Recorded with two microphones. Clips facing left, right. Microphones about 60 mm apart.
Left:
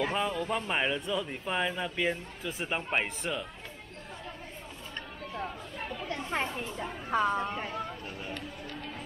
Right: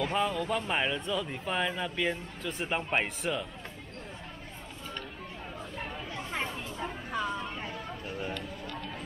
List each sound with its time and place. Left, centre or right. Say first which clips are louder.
0.0 s speech: right 1 dB; centre
6.4 s a sound: left 2 dB; left
7.1 s vehicle: left 7 dB; left